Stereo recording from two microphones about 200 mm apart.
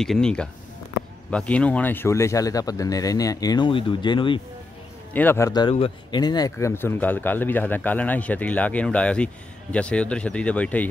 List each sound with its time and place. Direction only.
0.0 s speech: 5° left (ahead or behind); by 4.4 s 25° left (ahead or behind)
5.1 s speech: 10° left (ahead or behind)